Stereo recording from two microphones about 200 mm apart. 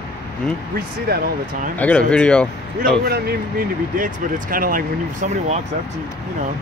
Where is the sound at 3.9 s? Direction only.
45° right (ahead or behind).